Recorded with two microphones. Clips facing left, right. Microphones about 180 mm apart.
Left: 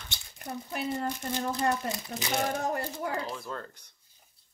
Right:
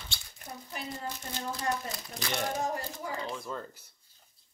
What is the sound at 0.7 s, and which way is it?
Speech, 60° left (ahead or behind).